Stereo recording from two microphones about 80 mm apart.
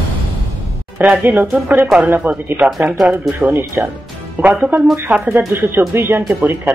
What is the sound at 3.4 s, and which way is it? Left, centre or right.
Speech, right.